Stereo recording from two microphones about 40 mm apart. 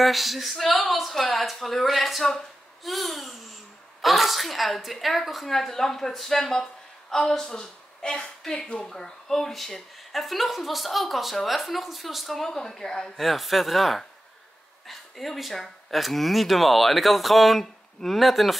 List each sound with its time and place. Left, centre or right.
0.0 s a woman's voice: centre
2.8 s babbling: centre
4.0 s a woman's voice: centre; by 8.9 s left
8.9 s a woman's voice: centre
12.4 s speech: centre
13.2 s a woman's voice: centre